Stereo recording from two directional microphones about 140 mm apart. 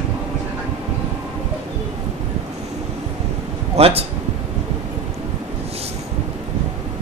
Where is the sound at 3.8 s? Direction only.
45° right (ahead or behind).